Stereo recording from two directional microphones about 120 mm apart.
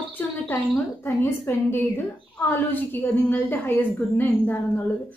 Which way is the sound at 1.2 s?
20° left (ahead or behind).